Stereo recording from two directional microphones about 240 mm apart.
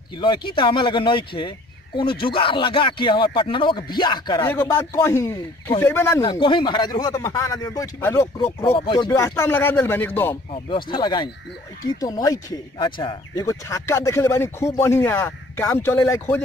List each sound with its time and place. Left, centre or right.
0.5 s speech: centre
10.5 s speech: left